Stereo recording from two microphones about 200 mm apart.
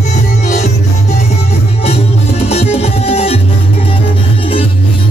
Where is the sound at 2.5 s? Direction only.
30° left (ahead or behind).